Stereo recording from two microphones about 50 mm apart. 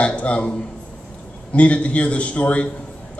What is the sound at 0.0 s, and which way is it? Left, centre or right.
A man's voice, left.